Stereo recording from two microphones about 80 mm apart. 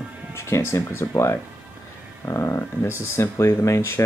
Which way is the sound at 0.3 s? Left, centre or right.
Left.